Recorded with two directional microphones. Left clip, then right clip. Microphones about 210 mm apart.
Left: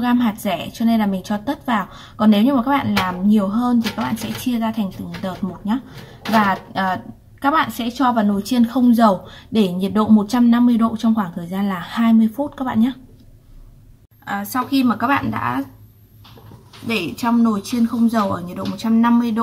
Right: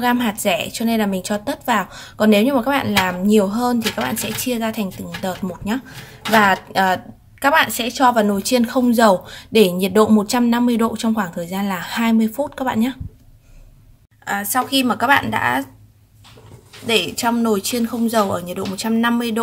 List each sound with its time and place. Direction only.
0.0 s a woman's voice: 30° right (ahead or behind)
14.2 s speech: 30° right (ahead or behind)
17.0 s speech: 35° right (ahead or behind)